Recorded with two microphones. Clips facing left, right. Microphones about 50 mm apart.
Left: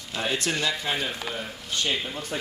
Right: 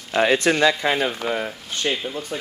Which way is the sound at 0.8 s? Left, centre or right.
Right.